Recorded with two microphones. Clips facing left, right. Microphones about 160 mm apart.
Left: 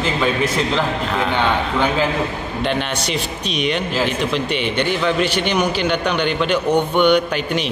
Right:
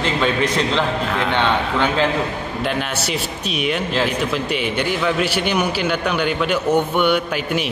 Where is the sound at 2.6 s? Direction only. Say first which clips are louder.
Left 2 dB; 5° right (ahead or behind).